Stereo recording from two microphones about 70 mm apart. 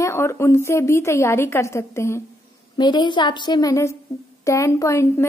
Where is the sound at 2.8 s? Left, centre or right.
Left.